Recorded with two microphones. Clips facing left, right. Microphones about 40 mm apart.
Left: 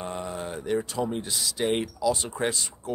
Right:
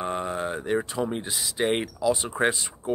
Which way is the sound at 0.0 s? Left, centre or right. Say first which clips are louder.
Right 5 dB; right.